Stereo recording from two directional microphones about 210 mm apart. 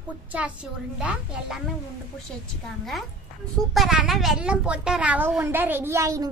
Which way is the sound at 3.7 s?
Centre (ahead or behind).